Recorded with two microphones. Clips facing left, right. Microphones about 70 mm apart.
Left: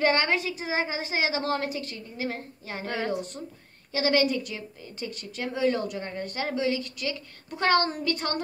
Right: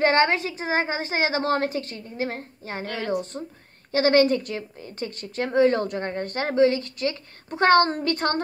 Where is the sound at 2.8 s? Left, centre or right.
Left.